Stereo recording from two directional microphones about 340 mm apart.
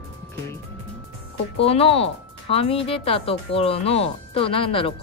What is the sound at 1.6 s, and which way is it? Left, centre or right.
Speech, centre.